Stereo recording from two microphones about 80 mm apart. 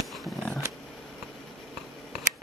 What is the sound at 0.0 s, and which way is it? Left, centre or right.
Dog, centre.